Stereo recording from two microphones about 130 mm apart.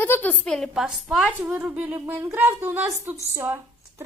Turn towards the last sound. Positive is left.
turn(degrees=-20)  # may be behind; listen again after turning